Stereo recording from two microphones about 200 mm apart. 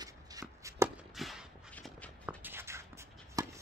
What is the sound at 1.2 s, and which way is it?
Walk, centre (ahead or behind).